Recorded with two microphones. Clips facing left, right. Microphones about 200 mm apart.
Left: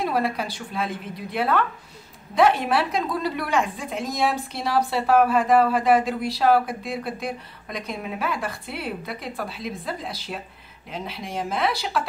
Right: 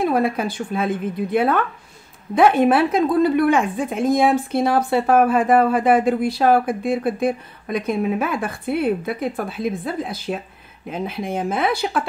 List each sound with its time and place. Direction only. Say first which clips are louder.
0.0 s speech: right 5 dB; 50° right (ahead or behind)